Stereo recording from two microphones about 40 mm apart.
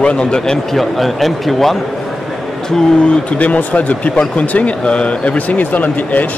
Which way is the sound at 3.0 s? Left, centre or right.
Left.